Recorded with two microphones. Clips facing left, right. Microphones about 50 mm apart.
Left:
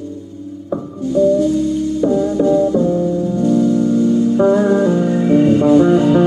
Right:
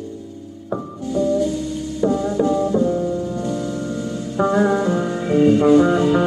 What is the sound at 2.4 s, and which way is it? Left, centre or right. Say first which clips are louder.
Music: left 4 dB; centre.